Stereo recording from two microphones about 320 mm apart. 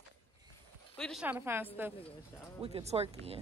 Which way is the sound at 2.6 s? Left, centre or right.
Centre.